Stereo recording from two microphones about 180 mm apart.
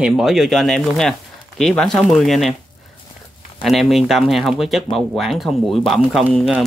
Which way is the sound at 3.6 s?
Centre (ahead or behind).